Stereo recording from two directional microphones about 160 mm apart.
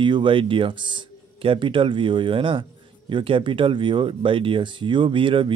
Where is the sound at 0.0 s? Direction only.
30° right (ahead or behind).